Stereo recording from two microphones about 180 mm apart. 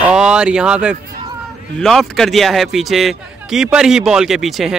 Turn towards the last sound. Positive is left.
turn(degrees=0)  # may be behind; listen again after turning